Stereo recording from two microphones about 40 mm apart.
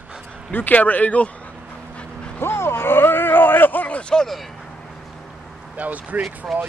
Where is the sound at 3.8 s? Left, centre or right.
Left.